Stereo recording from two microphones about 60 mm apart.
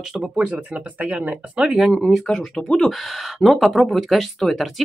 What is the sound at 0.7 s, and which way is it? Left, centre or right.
Speech, centre.